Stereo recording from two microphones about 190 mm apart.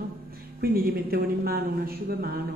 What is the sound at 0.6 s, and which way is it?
A woman's voice, 55° right (ahead or behind).